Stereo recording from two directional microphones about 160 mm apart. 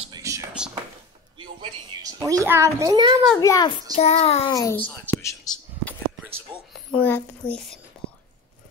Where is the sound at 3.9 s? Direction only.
40° left (ahead or behind).